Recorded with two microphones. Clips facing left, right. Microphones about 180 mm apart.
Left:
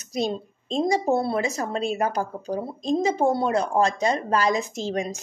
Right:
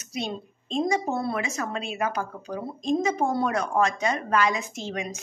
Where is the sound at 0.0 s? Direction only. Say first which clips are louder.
Left 6 dB; 40° left (ahead or behind).